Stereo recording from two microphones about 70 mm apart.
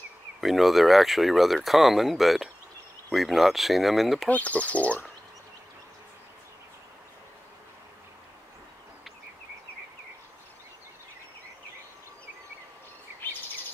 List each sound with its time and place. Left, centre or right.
0.4 s speech: centre
4.3 s speech: left